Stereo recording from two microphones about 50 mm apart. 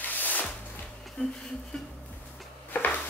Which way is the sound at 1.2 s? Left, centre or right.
Left.